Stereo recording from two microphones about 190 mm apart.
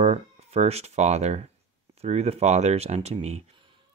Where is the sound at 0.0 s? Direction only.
35° right (ahead or behind).